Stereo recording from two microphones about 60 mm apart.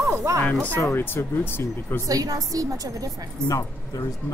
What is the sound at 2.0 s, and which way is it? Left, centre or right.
A woman's voice, right.